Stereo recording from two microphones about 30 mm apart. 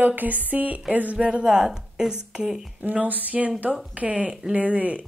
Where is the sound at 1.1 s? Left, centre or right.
Right.